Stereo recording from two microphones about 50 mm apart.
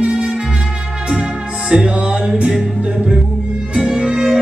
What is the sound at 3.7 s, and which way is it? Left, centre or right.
Music, centre.